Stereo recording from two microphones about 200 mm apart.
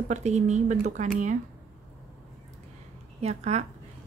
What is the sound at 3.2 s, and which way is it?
Speech, 35° right (ahead or behind).